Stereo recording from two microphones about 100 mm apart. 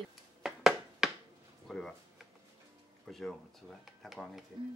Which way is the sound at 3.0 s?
Centre (ahead or behind).